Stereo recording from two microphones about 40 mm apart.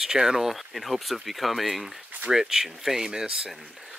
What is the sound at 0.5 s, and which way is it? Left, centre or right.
Speech, centre.